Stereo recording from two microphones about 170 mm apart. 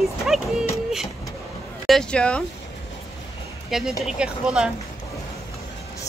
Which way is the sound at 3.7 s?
Centre (ahead or behind).